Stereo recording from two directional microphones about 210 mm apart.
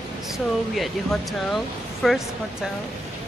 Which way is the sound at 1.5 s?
Centre (ahead or behind).